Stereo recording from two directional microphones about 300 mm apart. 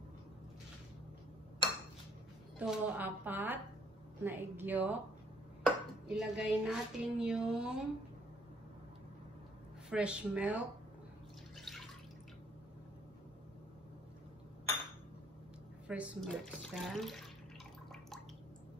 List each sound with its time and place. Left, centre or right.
1.6 s a sound: centre
2.6 s a woman's voice: centre
6.0 s a woman's voice: centre
9.8 s a woman's voice: centre
11.5 s drip: centre
15.9 s a woman's voice: centre